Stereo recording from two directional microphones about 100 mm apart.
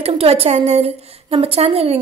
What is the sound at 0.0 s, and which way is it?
A woman's voice, 85° right.